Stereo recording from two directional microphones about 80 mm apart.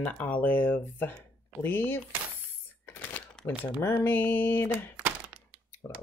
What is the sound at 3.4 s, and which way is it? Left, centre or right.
Crumpling, centre.